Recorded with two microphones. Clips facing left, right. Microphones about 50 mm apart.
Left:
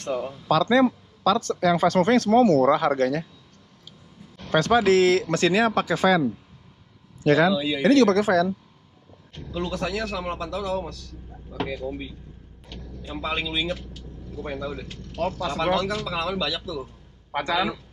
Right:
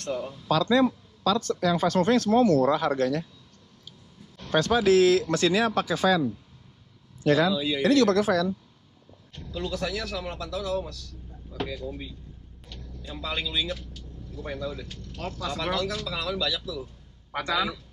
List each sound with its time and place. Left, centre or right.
0.0 s a man's voice: centre
0.5 s a man's voice: left
4.5 s speech: left
7.2 s speech: left
7.5 s speech: centre
7.9 s speech: left
9.3 s a man's voice: left
12.6 s vehicle: left
14.8 s a man's voice: left